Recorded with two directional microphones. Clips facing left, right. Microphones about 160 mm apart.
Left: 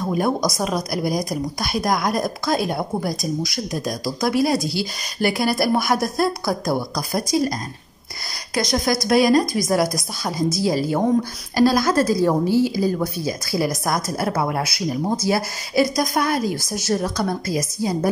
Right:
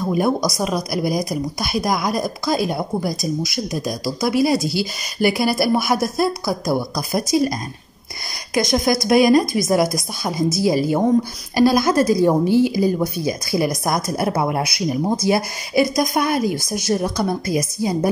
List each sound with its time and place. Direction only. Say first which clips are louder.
0.0 s a woman's voice: right 2 dB; 5° right (ahead or behind)
9.0 s a woman's voice: right 2 dB; 15° right (ahead or behind)